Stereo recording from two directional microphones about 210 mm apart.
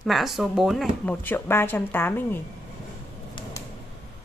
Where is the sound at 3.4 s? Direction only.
25° left (ahead or behind).